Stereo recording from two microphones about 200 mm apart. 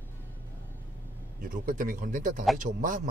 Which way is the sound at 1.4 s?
45° right (ahead or behind).